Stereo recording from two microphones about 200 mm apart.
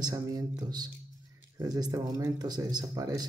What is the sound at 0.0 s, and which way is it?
Speech, 15° right (ahead or behind).